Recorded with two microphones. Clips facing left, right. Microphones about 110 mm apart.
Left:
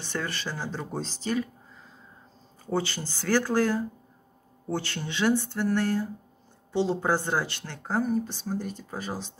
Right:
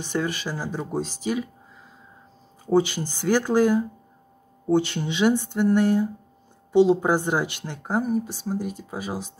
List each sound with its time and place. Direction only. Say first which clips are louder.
0.0 s speech: right 6 dB; 15° right (ahead or behind)
2.6 s speech: right 8 dB; 15° right (ahead or behind)